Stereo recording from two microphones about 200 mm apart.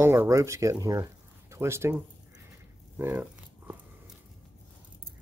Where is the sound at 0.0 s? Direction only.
10° right (ahead or behind).